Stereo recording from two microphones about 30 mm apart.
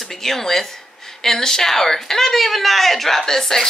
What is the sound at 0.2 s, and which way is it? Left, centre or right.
Speech, centre.